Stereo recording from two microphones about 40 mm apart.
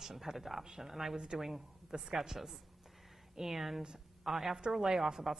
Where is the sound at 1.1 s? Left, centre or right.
Centre.